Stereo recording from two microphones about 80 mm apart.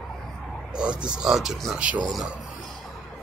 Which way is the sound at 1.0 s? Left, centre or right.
Centre.